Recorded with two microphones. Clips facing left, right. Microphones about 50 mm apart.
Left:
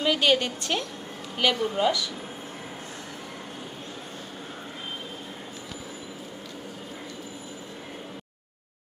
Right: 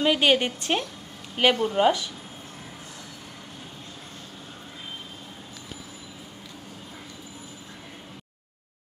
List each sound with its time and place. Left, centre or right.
0.0 s a woman's voice: right